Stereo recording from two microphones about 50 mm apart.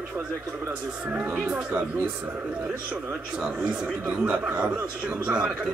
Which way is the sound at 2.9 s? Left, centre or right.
Right.